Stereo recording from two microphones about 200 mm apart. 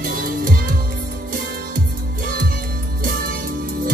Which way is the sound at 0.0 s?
45° right (ahead or behind).